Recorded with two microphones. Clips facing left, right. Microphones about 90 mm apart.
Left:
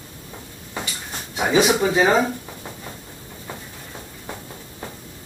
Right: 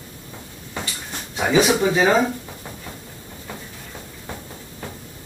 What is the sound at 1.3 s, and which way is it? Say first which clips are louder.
Speech: even; 15° left (ahead or behind).